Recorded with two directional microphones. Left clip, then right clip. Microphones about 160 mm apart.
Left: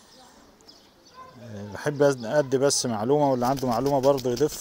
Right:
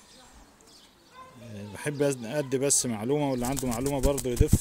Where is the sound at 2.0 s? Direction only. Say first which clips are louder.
Left 7 dB; 35° right (ahead or behind).